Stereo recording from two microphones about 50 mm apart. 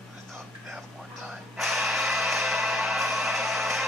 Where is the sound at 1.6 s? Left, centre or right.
Centre.